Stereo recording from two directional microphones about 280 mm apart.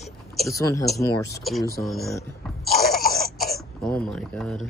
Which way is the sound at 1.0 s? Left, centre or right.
Centre.